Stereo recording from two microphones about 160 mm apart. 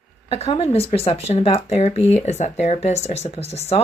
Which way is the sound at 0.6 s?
40° left (ahead or behind).